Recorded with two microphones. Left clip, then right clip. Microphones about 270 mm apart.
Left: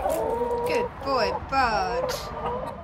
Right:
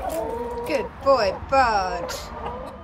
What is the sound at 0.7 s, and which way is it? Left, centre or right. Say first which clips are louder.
Speech: right 5 dB; centre.